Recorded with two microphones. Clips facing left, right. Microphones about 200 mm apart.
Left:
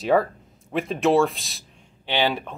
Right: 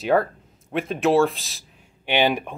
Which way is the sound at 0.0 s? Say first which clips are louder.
Even; centre (ahead or behind).